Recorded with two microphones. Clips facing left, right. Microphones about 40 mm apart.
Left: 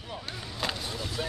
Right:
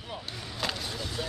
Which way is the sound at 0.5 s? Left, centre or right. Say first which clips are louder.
Even; centre.